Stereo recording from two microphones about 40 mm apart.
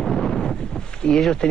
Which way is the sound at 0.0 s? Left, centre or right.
Centre.